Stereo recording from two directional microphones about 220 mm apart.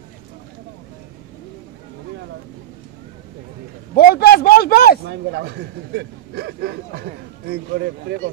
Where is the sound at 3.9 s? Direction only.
45° left (ahead or behind).